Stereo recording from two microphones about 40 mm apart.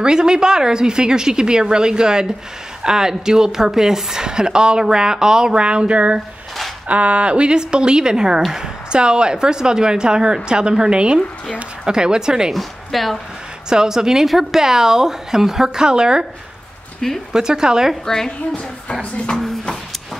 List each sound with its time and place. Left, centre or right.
0.0 s a woman's voice: centre
12.5 s speech: centre
13.7 s a woman's voice: centre
17.3 s a woman's voice: centre
18.0 s a woman's voice: centre
18.5 s speech: left